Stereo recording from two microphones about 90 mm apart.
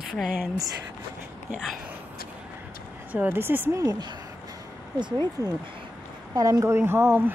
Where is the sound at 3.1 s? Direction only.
20° right (ahead or behind).